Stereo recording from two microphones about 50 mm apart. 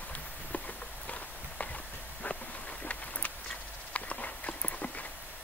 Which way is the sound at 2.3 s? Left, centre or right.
Left.